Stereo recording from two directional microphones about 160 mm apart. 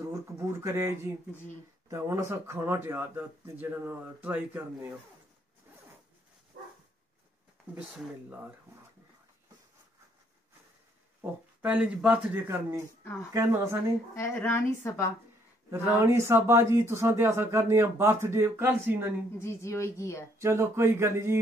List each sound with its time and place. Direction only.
0.4 s a man's voice: 15° right (ahead or behind)
11.1 s a man's voice: 10° right (ahead or behind)
14.1 s speech: 15° left (ahead or behind)
16.0 s a man's voice: 15° right (ahead or behind)
19.3 s speech: 15° left (ahead or behind)
20.3 s a man's voice: 15° right (ahead or behind)